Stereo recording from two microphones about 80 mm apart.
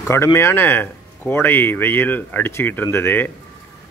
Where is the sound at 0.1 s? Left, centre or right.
Left.